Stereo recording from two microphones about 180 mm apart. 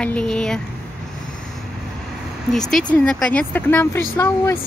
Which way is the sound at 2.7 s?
5° left (ahead or behind).